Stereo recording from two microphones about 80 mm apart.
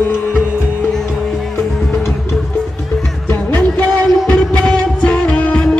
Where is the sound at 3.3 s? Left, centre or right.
Centre.